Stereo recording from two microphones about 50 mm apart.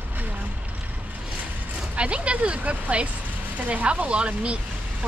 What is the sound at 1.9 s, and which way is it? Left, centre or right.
Speech, right.